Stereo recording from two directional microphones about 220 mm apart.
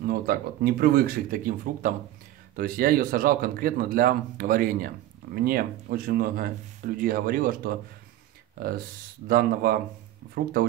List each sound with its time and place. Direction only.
0.0 s speech: 45° right (ahead or behind)